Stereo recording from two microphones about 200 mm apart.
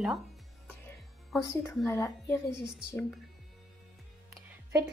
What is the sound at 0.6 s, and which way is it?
Music, 10° left (ahead or behind).